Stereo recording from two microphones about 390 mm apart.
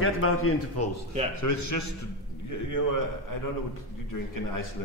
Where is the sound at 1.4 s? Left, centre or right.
Left.